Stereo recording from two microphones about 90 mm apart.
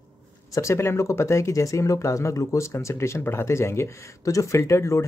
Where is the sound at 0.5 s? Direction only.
35° left (ahead or behind).